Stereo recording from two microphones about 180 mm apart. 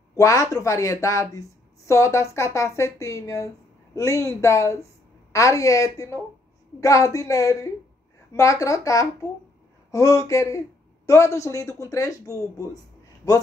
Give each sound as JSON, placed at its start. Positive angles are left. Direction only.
{"t": 0.1, "sound": "speech", "side_deg": 20}